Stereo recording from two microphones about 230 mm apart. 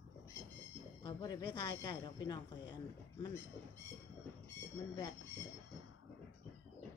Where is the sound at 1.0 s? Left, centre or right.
Centre.